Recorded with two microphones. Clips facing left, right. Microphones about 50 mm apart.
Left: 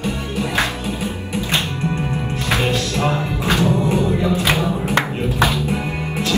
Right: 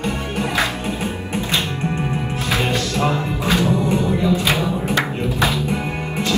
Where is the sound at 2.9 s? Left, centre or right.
Left.